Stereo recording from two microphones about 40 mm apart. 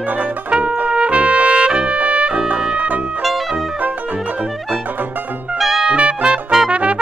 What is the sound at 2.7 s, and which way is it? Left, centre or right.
Trumpet, right.